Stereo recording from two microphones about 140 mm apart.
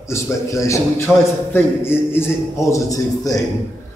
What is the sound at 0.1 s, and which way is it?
A man's voice, 20° left (ahead or behind).